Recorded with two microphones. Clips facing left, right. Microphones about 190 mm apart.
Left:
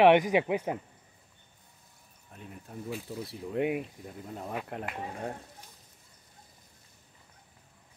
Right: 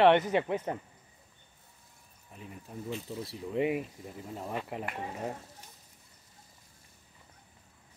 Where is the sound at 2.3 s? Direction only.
Centre (ahead or behind).